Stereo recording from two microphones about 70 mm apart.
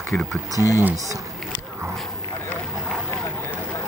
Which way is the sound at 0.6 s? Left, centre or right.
Left.